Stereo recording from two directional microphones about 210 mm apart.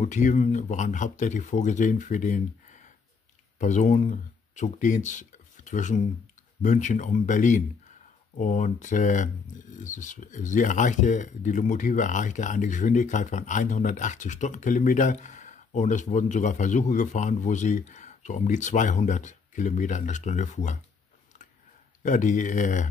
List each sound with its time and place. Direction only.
0.0 s speech: 35° left (ahead or behind)
22.0 s speech: 35° left (ahead or behind)